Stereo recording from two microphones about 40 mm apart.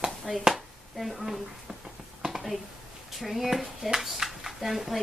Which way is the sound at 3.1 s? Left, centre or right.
Centre.